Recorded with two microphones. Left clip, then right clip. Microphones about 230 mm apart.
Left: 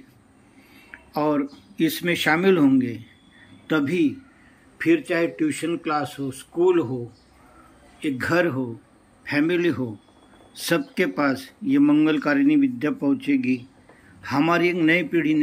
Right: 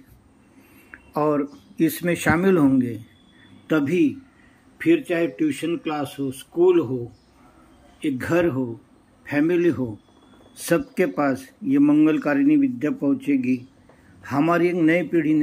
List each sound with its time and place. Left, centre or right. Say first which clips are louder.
0.9 s a man's voice: right 1 dB; centre
8.0 s speech: even; centre